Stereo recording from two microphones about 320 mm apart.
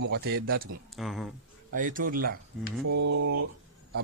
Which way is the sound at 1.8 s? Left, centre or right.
Right.